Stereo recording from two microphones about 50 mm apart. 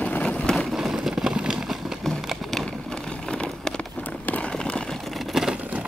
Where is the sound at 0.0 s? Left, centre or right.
Left.